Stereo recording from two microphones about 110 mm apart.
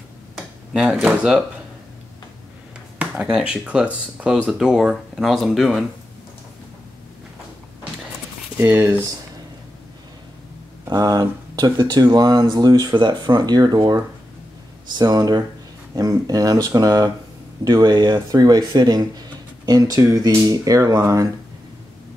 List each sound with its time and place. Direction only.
0.4 s speech: 5° right (ahead or behind)
3.0 s speech: 10° right (ahead or behind)
8.5 s speech: 20° right (ahead or behind)
10.9 s speech: 35° right (ahead or behind)